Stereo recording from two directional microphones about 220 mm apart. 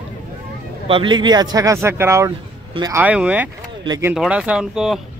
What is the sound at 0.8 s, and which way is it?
A man's voice, 25° right (ahead or behind).